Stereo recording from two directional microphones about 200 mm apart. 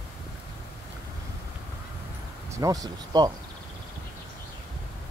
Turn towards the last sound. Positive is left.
turn(degrees=-20)  # may be behind; listen again after turning